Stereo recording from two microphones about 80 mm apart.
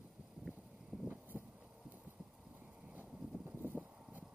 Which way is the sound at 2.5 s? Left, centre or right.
Right.